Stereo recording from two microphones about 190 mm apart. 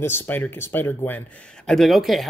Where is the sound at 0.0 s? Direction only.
10° left (ahead or behind).